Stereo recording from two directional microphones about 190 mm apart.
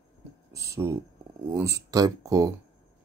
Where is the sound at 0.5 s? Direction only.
15° right (ahead or behind).